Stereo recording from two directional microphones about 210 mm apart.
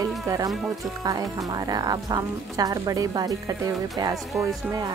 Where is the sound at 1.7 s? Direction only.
20° right (ahead or behind).